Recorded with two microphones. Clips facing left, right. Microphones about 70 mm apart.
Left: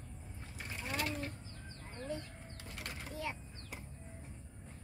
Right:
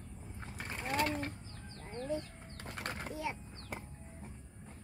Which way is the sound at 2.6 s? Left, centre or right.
Right.